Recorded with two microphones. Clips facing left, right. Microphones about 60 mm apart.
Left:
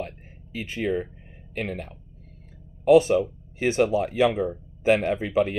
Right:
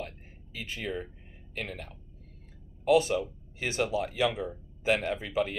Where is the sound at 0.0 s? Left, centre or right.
Left.